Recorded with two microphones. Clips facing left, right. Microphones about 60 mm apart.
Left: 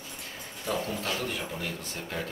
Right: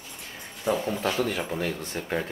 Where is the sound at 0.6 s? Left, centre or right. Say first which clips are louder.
Right 6 dB; right.